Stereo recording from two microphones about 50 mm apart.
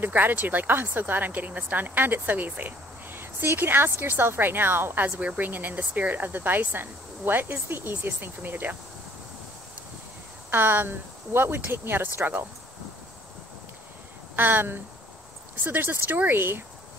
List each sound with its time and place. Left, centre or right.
0.0 s speech: right
10.5 s speech: right
14.3 s speech: right